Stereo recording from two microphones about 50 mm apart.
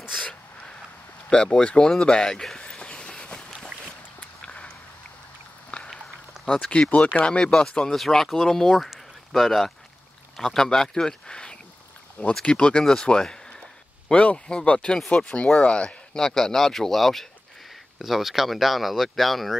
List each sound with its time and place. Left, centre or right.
0.2 s a sound: centre
5.7 s walk: left
6.4 s speech: centre